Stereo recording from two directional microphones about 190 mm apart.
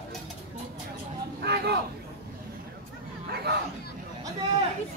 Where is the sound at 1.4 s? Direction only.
60° right (ahead or behind).